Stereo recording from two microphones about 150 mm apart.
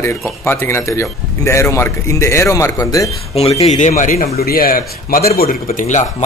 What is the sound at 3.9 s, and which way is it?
Speech, 70° left (ahead or behind).